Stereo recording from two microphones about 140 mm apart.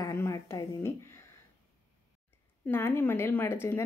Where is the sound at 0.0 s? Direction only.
20° left (ahead or behind).